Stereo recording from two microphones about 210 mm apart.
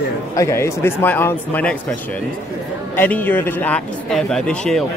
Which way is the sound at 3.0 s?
10° left (ahead or behind).